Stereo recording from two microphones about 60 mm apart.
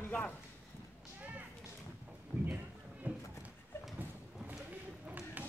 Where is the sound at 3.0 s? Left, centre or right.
Right.